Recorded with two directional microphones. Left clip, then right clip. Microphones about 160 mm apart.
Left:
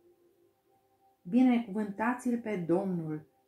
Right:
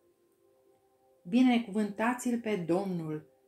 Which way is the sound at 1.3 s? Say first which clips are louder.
Even; 45° right (ahead or behind).